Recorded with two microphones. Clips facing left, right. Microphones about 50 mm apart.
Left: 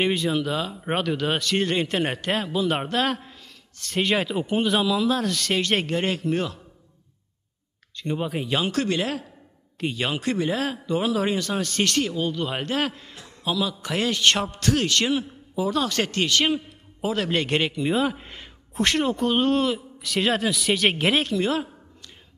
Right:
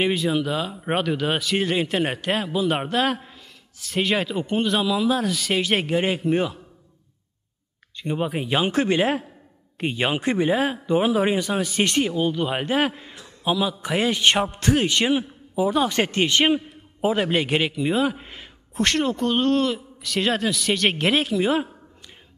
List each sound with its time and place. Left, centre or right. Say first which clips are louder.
0.0 s speech: right 1 dB; centre
7.9 s a man's voice: right 2 dB; centre